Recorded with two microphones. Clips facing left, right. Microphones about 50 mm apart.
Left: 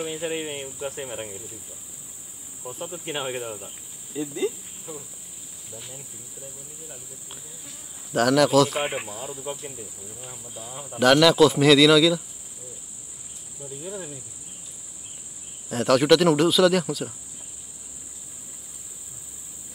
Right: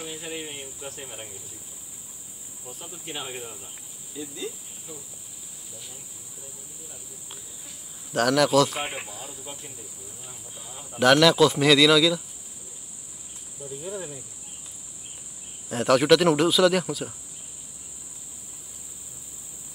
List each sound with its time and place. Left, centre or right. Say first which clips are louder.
0.0 s speech: left 7 dB; left
2.6 s cricket: left 8 dB; left
8.1 s speech: left 2 dB; centre
9.4 s speech: left 8 dB; left
10.7 s speech: left 4 dB; centre
11.0 s speech: left 1 dB; centre
13.6 s speech: right 1 dB; centre
15.7 s speech: left 1 dB; centre